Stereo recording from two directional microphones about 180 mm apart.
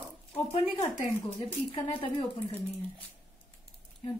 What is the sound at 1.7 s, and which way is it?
Speech, 30° left (ahead or behind).